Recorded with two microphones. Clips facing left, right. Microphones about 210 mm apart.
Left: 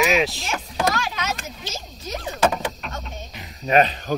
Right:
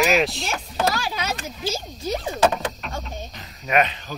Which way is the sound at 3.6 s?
35° left (ahead or behind).